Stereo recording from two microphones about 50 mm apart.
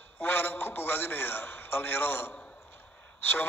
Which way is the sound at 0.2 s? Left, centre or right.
Left.